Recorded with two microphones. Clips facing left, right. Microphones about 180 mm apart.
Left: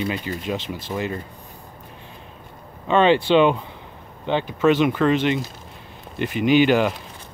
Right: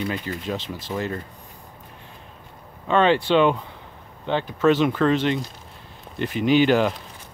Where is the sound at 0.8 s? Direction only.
15° left (ahead or behind).